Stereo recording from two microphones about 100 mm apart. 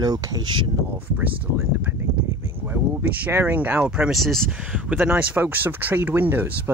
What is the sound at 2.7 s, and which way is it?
Speech, 20° right (ahead or behind).